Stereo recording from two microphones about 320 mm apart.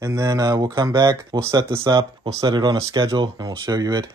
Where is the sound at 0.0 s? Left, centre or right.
Centre.